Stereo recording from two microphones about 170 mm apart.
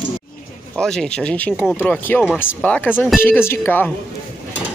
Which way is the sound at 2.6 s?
10° left (ahead or behind).